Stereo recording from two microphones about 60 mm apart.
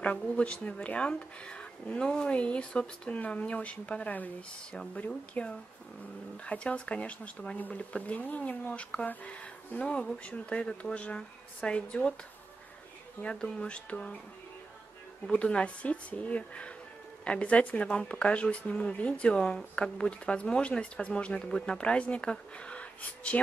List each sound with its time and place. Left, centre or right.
0.4 s speech: left
13.2 s speech: centre
15.3 s speech: centre